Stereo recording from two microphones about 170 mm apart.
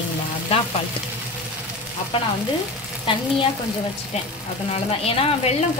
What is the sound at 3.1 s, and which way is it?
Speech, 30° left (ahead or behind).